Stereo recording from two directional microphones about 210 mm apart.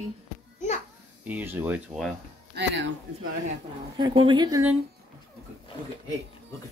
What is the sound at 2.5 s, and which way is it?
Speech, 55° right (ahead or behind).